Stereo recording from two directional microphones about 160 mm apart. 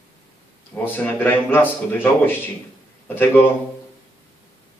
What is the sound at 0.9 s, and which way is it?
A man's voice, 10° left (ahead or behind).